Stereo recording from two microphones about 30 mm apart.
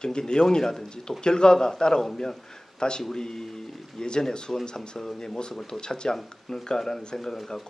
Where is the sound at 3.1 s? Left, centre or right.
Left.